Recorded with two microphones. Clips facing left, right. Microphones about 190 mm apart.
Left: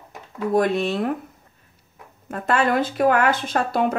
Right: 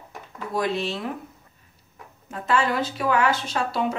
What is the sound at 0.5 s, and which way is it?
Speech, 50° left (ahead or behind).